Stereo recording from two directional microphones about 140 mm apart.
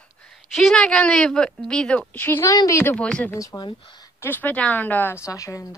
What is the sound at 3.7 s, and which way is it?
Speech, 40° left (ahead or behind).